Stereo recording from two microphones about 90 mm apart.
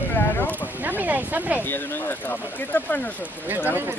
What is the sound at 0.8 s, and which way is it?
Speech, 20° right (ahead or behind).